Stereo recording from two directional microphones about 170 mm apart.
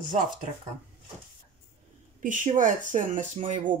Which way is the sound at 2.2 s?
50° right (ahead or behind).